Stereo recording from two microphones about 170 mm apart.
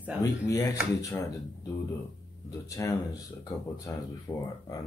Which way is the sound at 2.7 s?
20° left (ahead or behind).